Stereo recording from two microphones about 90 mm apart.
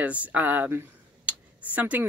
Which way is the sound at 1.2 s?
15° right (ahead or behind).